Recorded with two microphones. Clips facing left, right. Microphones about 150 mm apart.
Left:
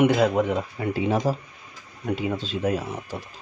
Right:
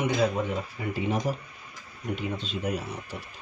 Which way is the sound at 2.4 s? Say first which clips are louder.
Left 5 dB; 90° left.